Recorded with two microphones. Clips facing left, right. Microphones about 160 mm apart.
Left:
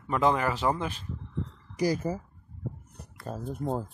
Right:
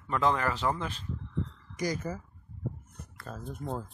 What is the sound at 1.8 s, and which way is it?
Speech, 35° left (ahead or behind).